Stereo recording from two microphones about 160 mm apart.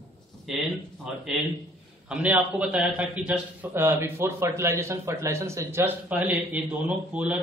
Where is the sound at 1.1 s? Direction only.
5° right (ahead or behind).